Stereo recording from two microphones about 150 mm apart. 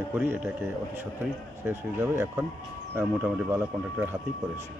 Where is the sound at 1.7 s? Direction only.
15° right (ahead or behind).